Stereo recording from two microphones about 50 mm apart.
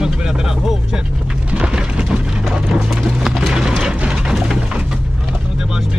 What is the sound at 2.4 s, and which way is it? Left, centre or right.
Clip-clop, centre.